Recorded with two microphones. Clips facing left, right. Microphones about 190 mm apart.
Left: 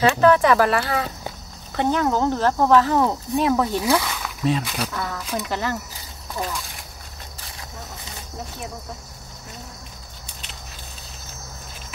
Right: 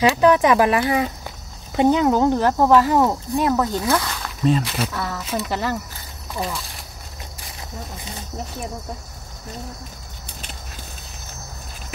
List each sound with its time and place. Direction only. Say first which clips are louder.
0.1 s speech: right 1 dB; 15° right (ahead or behind)
3.3 s speech: left 1 dB; centre (ahead or behind)